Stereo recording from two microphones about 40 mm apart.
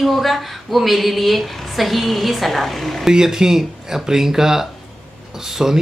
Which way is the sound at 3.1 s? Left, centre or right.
Centre.